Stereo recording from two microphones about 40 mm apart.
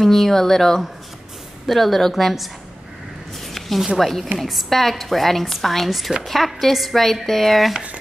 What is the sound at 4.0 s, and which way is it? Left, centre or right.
Speech, centre.